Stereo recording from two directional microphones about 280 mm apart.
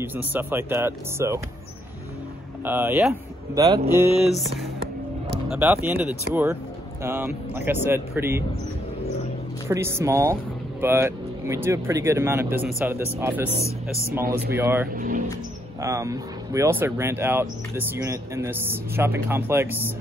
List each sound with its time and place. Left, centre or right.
0.0 s speech: centre
2.6 s speech: centre
4.2 s a sound: centre
5.5 s speech: centre
9.7 s speech: centre
15.0 s speech: right
15.8 s speech: centre